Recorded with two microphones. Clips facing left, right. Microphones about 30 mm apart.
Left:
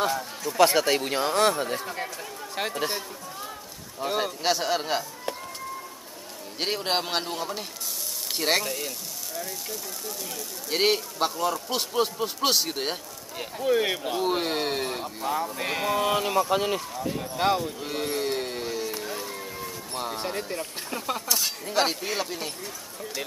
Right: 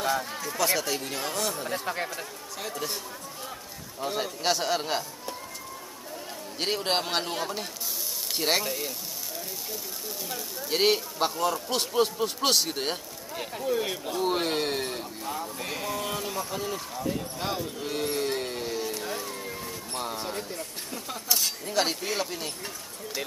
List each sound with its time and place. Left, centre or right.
0.1 s speech: centre
0.6 s speech: left
4.0 s a man's voice: centre
6.6 s a man's voice: centre
10.7 s a man's voice: centre
13.7 s speech: left
14.2 s a man's voice: centre
15.2 s speech: left
16.9 s a man's voice: centre
17.4 s speech: left
17.7 s a sound: centre
20.4 s speech: left
21.4 s a man's voice: centre